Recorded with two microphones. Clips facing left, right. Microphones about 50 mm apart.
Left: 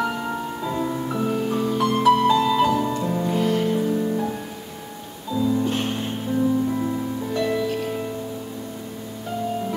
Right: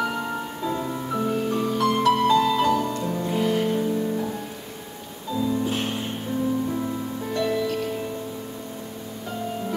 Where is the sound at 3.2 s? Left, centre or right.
Centre.